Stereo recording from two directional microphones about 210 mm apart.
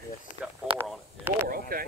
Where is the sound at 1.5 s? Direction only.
45° right (ahead or behind).